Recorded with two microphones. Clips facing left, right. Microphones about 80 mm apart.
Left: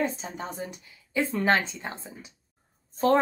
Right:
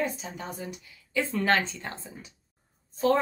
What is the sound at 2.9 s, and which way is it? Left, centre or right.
Speech, left.